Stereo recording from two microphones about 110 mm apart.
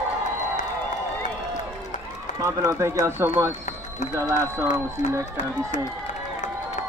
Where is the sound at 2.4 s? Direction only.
30° right (ahead or behind).